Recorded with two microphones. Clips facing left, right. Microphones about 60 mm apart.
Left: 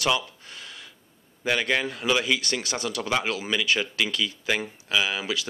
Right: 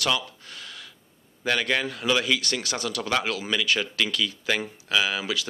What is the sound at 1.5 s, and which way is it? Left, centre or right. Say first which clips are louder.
Speech: even; centre.